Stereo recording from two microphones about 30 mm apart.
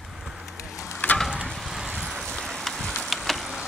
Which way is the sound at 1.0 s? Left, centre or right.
Left.